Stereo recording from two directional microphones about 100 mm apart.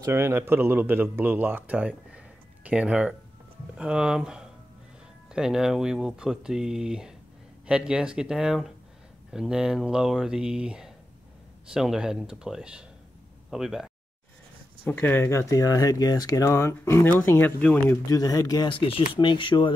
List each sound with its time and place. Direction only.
0.0 s speech: 25° right (ahead or behind); by 13.9 s 5° right (ahead or behind)
14.9 s speech: 20° left (ahead or behind)
18.0 s speech: 35° left (ahead or behind)
18.7 s speech: 65° left (ahead or behind)